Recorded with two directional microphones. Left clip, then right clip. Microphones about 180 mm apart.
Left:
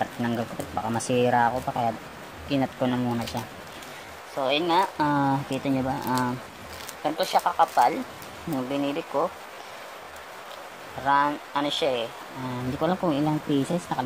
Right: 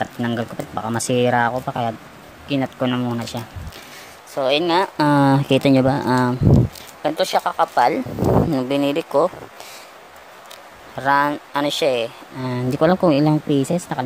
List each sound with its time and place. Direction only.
0.0 s speech: 30° right (ahead or behind)
4.4 s speech: 50° right (ahead or behind)
11.1 s speech: 50° right (ahead or behind)